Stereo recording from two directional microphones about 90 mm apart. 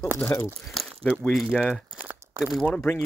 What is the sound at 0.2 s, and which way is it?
Speech, 30° left (ahead or behind).